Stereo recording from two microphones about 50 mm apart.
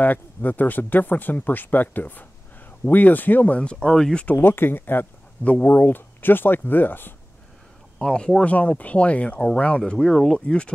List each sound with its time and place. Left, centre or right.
0.0 s speech: left
3.8 s speech: centre
4.4 s speech: left
5.4 s speech: left
8.0 s speech: centre
8.5 s speech: left
9.9 s speech: centre
10.4 s speech: left